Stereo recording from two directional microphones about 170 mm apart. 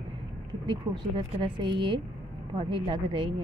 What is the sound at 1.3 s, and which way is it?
A woman's voice, 30° right (ahead or behind).